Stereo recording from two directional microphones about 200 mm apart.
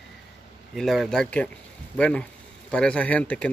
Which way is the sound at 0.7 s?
Centre (ahead or behind).